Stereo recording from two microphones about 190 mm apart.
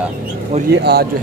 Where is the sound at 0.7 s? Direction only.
60° right (ahead or behind).